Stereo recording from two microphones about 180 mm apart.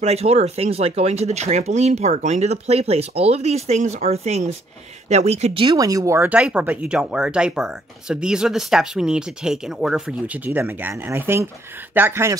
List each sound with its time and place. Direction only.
0.0 s speech: 35° right (ahead or behind); by 12.4 s 15° right (ahead or behind)